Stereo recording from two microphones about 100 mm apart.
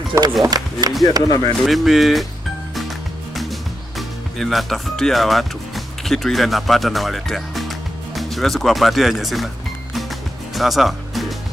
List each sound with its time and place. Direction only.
0.4 s speech: 40° right (ahead or behind)
1.2 s speech: 35° left (ahead or behind)
1.6 s speech: centre (ahead or behind)
3.3 s speech: centre (ahead or behind)
9.9 s music: centre (ahead or behind)